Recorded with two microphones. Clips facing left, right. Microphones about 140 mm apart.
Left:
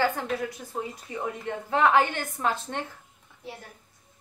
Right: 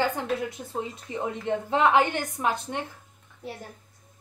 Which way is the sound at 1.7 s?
20° right (ahead or behind).